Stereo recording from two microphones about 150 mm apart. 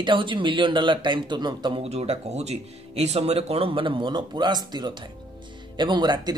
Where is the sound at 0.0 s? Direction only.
35° right (ahead or behind).